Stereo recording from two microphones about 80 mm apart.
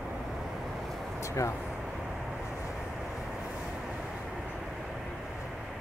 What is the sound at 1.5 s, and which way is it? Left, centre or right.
Vehicle, centre.